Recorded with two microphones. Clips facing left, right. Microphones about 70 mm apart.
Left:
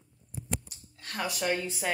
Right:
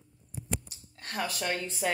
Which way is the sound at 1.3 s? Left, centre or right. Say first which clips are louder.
Left 3 dB; centre.